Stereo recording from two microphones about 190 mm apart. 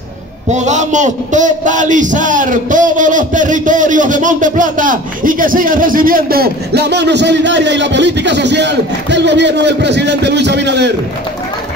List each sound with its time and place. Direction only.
0.5 s a man's voice: 40° right (ahead or behind); by 10.9 s 65° right (ahead or behind)